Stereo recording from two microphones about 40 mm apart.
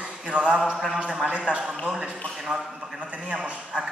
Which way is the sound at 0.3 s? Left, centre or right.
Right.